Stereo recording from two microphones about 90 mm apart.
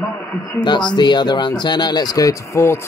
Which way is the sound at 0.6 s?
55° left (ahead or behind).